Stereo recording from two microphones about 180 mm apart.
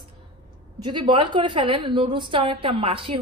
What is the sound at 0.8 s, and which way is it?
A woman's voice, 25° right (ahead or behind).